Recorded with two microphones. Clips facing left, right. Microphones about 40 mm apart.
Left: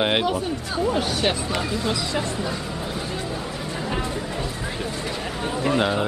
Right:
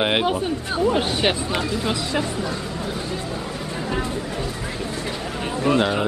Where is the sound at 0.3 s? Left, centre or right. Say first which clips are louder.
Right 2 dB; right.